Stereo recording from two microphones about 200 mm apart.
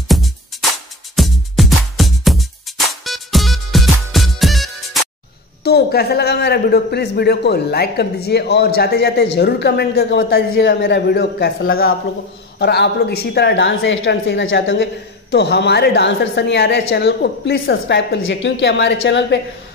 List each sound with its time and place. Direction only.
0.1 s music: centre (ahead or behind)
5.6 s a woman's voice: 55° left (ahead or behind); by 14.9 s 70° left (ahead or behind)
15.3 s a woman's voice: 60° left (ahead or behind)